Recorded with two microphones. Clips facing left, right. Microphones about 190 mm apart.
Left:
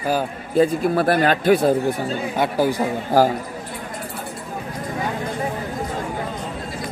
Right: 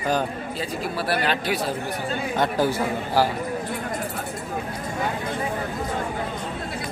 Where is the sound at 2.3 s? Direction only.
10° left (ahead or behind).